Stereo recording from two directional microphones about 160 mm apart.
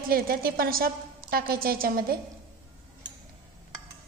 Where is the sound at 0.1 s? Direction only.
70° right (ahead or behind).